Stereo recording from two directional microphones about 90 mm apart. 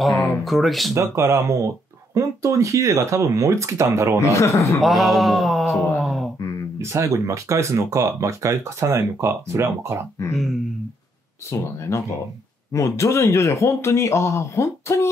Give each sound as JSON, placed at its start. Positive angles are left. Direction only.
{"t": 0.0, "sound": "speech", "side_deg": 0}
{"t": 0.9, "sound": "speech", "side_deg": -35}
{"t": 4.2, "sound": "speech", "side_deg": 35}
{"t": 4.8, "sound": "speech", "side_deg": 0}
{"t": 6.8, "sound": "speech", "side_deg": -35}
{"t": 10.3, "sound": "speech", "side_deg": 0}
{"t": 11.9, "sound": "speech", "side_deg": 35}